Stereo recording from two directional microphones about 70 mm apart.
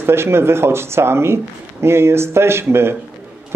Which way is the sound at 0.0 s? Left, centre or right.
Right.